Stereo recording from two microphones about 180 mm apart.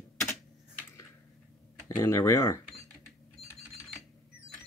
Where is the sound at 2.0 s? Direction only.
15° left (ahead or behind).